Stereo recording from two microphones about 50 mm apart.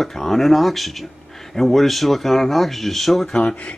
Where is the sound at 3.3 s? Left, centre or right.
Left.